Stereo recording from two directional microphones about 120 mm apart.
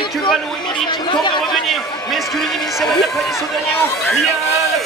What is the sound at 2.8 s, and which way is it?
Speech, 5° left (ahead or behind).